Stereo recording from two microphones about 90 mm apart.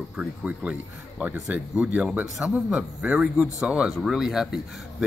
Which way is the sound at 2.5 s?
5° right (ahead or behind).